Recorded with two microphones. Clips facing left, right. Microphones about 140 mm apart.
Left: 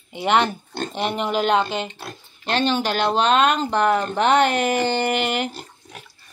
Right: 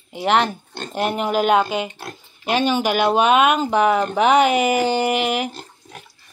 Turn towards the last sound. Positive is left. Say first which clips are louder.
# even
turn(degrees=5)  # may be behind; listen again after turning